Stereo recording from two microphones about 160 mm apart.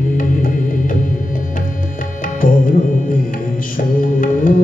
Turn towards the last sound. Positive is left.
turn(degrees=60)  # may be behind; listen again after turning